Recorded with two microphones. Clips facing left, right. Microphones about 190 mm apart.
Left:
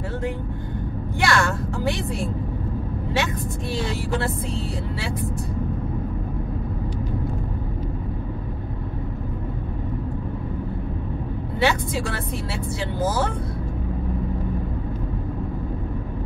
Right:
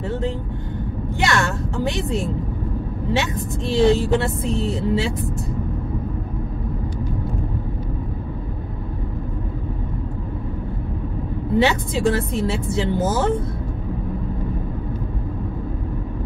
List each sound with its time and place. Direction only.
1.2 s a sound: 20° right (ahead or behind)
3.1 s vehicle: 25° right (ahead or behind)
3.9 s a woman's voice: 25° right (ahead or behind)
11.5 s a woman's voice: 20° right (ahead or behind)